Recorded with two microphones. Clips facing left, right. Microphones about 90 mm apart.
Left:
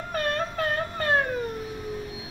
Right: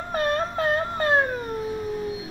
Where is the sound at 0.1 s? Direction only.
25° right (ahead or behind).